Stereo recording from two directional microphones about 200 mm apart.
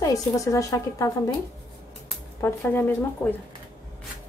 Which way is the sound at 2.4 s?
10° left (ahead or behind).